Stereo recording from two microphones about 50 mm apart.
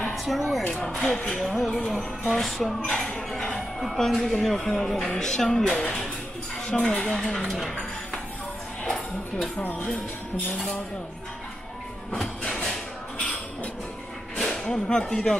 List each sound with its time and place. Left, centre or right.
0.1 s music: centre
1.1 s speech: left
1.4 s music: centre
3.3 s speech: centre
7.4 s music: centre
8.8 s a sound: centre
9.6 s speech: left
14.4 s speech: centre